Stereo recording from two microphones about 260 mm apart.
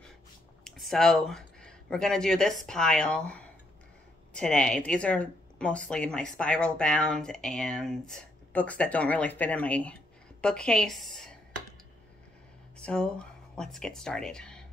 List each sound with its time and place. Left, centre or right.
0.7 s a woman's voice: centre
12.7 s speech: centre